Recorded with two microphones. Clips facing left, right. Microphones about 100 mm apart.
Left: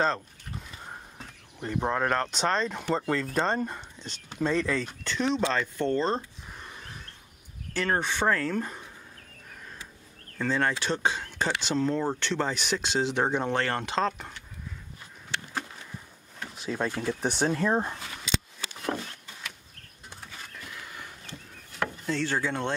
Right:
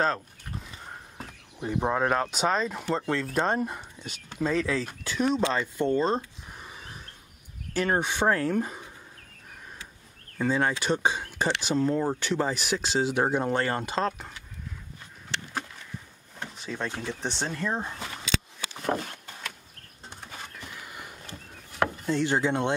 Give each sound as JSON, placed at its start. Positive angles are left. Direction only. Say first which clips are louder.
{"t": 0.0, "sound": "speech", "louder": "even", "side_deg": -5}
{"t": 10.3, "sound": "speech", "louder": "right 1 dB", "side_deg": -10}
{"t": 16.5, "sound": "speech", "louder": "left 4 dB", "side_deg": 5}
{"t": 20.8, "sound": "a sound", "louder": "even", "side_deg": -5}
{"t": 21.3, "sound": "a sound", "louder": "right 1 dB", "side_deg": -35}
{"t": 22.0, "sound": "speech", "louder": "right 2 dB", "side_deg": -15}